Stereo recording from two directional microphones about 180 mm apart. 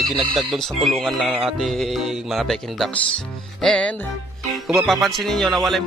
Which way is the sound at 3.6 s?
5° left (ahead or behind).